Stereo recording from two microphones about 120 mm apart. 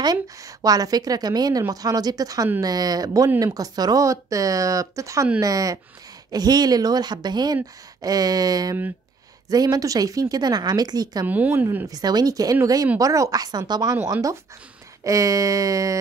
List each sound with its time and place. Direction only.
0.0 s a woman's voice: 30° right (ahead or behind)
11.2 s speech: 15° right (ahead or behind)
11.6 s a woman's voice: 25° right (ahead or behind)
15.0 s speech: 30° right (ahead or behind)